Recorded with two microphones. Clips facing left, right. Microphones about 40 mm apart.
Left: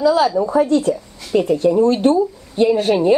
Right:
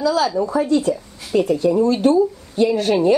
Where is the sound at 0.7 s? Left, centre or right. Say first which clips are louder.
Left 1 dB; left.